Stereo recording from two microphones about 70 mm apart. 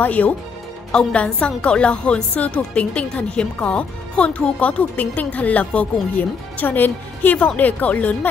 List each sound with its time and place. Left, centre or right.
0.0 s a woman's voice: left